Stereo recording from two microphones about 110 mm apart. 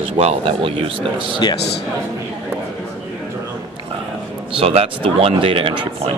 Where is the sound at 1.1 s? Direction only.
50° right (ahead or behind).